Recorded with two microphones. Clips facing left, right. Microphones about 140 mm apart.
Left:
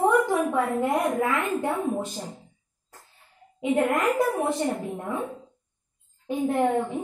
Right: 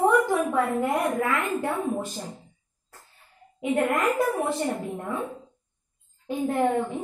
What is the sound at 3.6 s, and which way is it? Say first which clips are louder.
A woman's voice: left 1 dB; 20° left (ahead or behind).